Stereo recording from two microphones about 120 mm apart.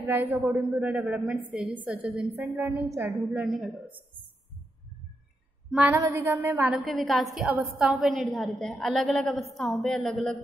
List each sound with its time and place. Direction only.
0.0 s a woman's voice: 20° right (ahead or behind)
3.4 s a woman's voice: 5° right (ahead or behind)
5.7 s a sound: 10° right (ahead or behind)
5.9 s a woman's voice: 25° right (ahead or behind)
6.7 s a woman's voice: centre (ahead or behind)